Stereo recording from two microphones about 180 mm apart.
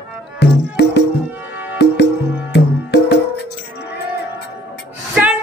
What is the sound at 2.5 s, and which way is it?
Music, 65° left (ahead or behind).